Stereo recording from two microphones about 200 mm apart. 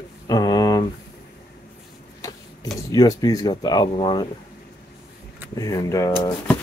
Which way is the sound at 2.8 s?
15° left (ahead or behind).